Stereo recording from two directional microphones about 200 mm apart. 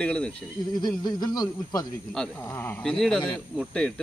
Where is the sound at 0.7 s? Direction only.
20° left (ahead or behind).